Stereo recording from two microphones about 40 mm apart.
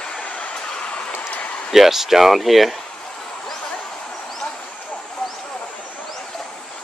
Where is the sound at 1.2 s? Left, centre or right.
Left.